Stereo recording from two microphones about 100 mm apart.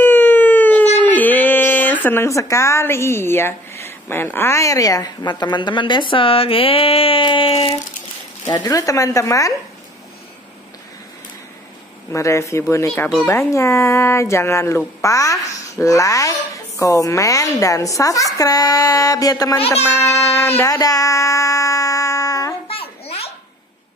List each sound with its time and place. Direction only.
0.0 s a sound: 20° left (ahead or behind); by 7.7 s 65° left (ahead or behind)
8.5 s speech: 40° left (ahead or behind)
12.1 s speech: 30° left (ahead or behind)
20.6 s speech: 35° left (ahead or behind)
22.7 s babbling: 75° left (ahead or behind)